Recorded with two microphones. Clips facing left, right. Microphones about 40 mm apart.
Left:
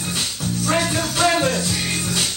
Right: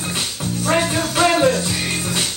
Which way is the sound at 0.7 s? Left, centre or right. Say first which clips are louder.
Right 3 dB; right.